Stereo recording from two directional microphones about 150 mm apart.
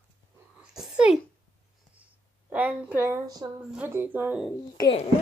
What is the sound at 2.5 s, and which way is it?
Speech, 10° right (ahead or behind).